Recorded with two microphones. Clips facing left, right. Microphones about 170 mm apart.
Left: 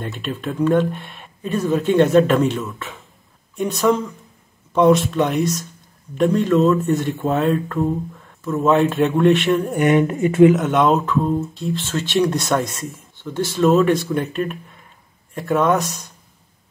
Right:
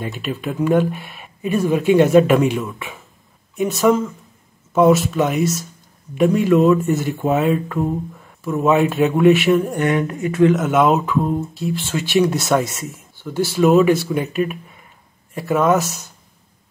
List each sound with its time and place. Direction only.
0.0 s speech: 5° right (ahead or behind)
9.8 s speech: 20° left (ahead or behind)
10.5 s speech: centre (ahead or behind)